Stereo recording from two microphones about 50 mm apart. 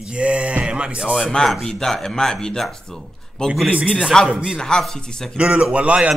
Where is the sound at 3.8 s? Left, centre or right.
Centre.